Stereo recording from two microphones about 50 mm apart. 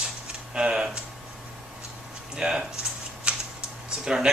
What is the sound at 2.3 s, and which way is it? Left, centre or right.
Speech, centre.